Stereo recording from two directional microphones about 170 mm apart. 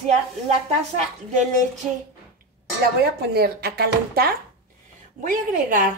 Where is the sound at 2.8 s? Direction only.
70° right (ahead or behind).